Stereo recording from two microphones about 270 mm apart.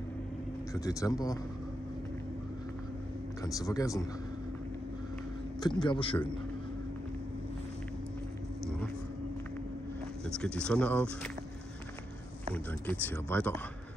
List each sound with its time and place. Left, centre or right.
0.7 s speech: centre
3.4 s speech: centre
5.6 s speech: centre
10.2 s speech: centre
12.8 s speech: centre